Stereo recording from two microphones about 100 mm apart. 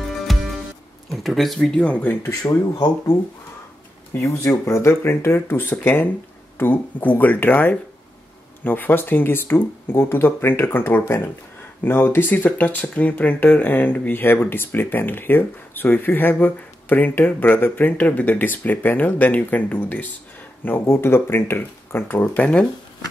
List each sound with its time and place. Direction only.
0.3 s music: centre (ahead or behind)
1.1 s speech: centre (ahead or behind)
2.2 s speech: 35° left (ahead or behind)
4.1 s speech: 30° left (ahead or behind); by 22.7 s 10° left (ahead or behind)